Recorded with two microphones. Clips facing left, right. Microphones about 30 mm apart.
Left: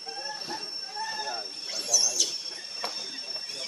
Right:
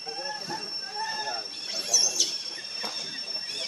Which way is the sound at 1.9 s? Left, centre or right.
Centre.